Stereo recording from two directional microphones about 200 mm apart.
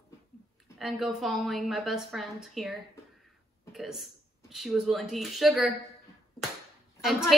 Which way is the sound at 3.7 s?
Centre (ahead or behind).